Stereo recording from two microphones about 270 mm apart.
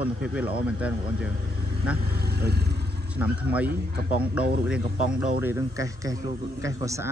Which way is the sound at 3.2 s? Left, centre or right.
Centre.